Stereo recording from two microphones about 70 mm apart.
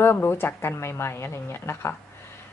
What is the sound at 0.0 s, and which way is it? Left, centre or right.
A woman's voice, left.